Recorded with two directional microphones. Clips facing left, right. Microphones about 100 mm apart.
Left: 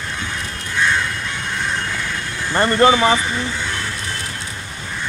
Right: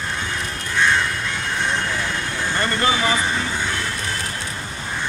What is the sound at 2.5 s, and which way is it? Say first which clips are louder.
Speech: left 8 dB; 35° left (ahead or behind).